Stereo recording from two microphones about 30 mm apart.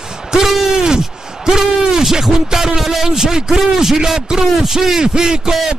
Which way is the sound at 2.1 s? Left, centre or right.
Centre.